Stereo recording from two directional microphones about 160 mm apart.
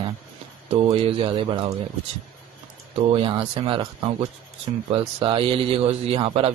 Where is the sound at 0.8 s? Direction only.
35° right (ahead or behind).